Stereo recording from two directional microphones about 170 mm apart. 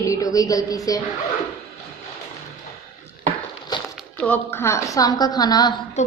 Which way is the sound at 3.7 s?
25° left (ahead or behind).